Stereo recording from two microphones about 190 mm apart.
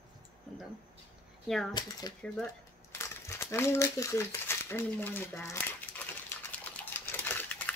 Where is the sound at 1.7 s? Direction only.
20° left (ahead or behind).